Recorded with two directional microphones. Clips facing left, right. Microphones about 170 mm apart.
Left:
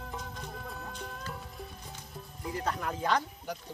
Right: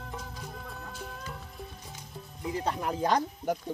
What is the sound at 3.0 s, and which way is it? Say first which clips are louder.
Speech: right 5 dB; 40° right (ahead or behind).